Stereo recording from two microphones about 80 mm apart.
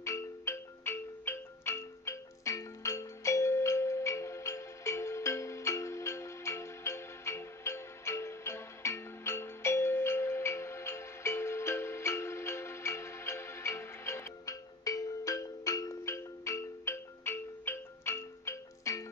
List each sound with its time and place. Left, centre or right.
0.0 s music: left